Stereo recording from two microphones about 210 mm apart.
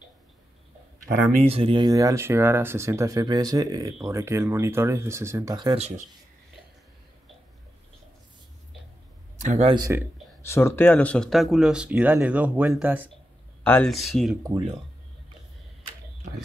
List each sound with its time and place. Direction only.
1.4 s speech: 25° right (ahead or behind)
5.8 s speech: 30° right (ahead or behind)
9.4 s speech: 35° right (ahead or behind)
9.8 s speech: 15° right (ahead or behind)
10.4 s speech: 10° left (ahead or behind); by 13.1 s 10° right (ahead or behind)
13.7 s speech: 5° left (ahead or behind)
14.4 s speech: 20° right (ahead or behind)